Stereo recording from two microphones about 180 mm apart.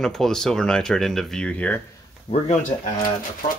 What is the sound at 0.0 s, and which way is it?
Speech, 5° left (ahead or behind).